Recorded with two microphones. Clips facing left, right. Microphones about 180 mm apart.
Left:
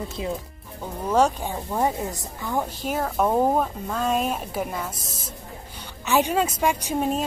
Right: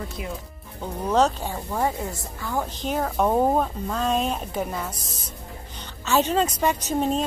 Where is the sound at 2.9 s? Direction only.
5° left (ahead or behind).